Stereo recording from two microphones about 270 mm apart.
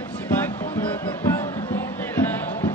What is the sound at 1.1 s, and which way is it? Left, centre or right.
Music, centre.